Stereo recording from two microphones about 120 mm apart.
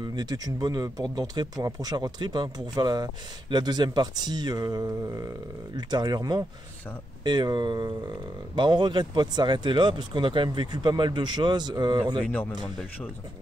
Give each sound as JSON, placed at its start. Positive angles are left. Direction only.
{"t": 0.0, "sound": "speech", "side_deg": -35}
{"t": 12.3, "sound": "speech", "side_deg": 15}